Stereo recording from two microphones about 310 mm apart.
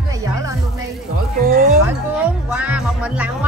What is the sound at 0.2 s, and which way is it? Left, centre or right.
Music, centre.